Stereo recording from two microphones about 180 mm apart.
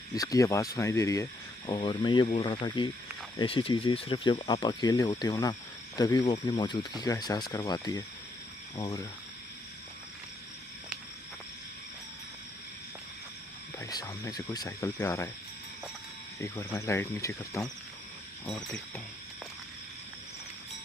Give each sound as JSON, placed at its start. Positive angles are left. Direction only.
{"t": 0.1, "sound": "speech", "side_deg": 20}
{"t": 13.7, "sound": "speech", "side_deg": 20}
{"t": 16.3, "sound": "speech", "side_deg": 15}
{"t": 18.4, "sound": "speech", "side_deg": 5}